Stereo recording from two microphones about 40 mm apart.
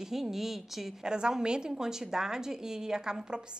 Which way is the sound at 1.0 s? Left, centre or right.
Centre.